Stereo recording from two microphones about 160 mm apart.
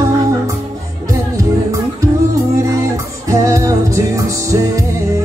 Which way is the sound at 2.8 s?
20° right (ahead or behind).